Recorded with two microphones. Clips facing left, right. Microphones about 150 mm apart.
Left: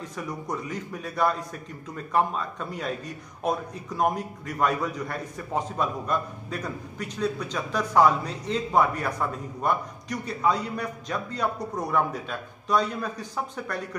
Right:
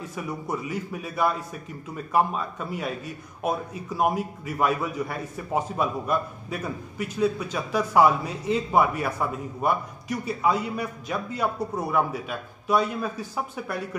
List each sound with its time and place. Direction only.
0.0 s a man's voice: 5° right (ahead or behind)